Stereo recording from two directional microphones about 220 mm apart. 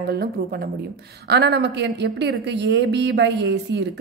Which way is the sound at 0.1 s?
45° right (ahead or behind).